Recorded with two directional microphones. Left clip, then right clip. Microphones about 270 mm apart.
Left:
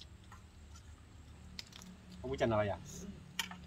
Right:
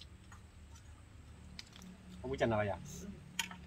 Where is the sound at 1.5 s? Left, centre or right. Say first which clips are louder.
Left 3 dB; left.